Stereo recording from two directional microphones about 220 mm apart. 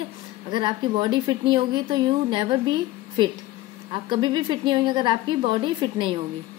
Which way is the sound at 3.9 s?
20° right (ahead or behind).